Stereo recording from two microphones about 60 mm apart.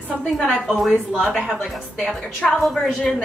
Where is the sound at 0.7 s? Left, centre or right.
Centre.